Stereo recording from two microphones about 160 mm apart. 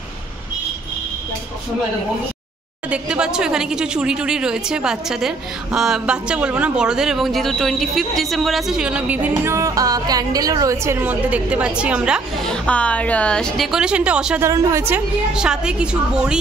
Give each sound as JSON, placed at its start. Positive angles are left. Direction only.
{"t": 2.9, "sound": "a woman's voice", "side_deg": -5}
{"t": 12.6, "sound": "a woman's voice", "side_deg": 10}
{"t": 14.4, "sound": "a woman's voice", "side_deg": -15}
{"t": 15.3, "sound": "a woman's voice", "side_deg": -5}